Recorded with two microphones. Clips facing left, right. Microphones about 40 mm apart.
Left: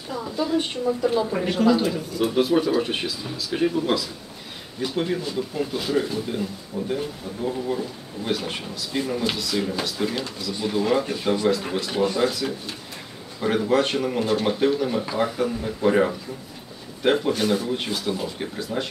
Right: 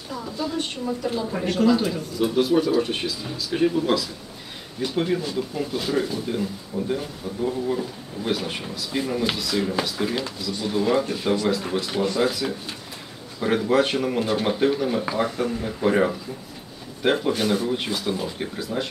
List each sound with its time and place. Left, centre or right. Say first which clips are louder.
0.1 s a woman's voice: left 4 dB; centre
7.7 s a woman's voice: right 1 dB; centre